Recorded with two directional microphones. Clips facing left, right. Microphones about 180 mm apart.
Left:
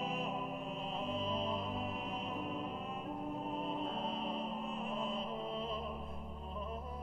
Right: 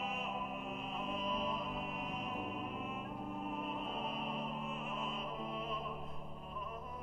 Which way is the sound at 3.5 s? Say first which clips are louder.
Left 2 dB; 30° left (ahead or behind).